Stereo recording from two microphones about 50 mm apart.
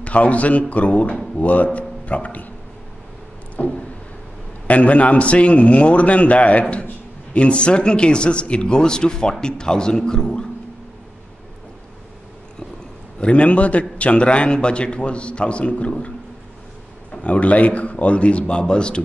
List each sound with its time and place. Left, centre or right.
0.0 s a man's voice: left
3.6 s a man's voice: left
13.2 s a man's voice: left
17.1 s a man's voice: left